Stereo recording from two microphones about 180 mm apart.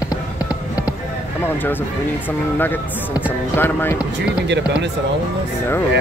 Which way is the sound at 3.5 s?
10° left (ahead or behind).